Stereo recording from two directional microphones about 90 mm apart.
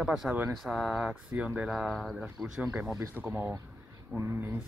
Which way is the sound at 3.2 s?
20° right (ahead or behind).